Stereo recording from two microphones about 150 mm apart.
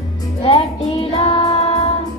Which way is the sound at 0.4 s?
35° left (ahead or behind).